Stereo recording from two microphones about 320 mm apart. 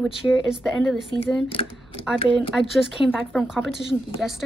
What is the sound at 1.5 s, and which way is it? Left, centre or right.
Speech, centre.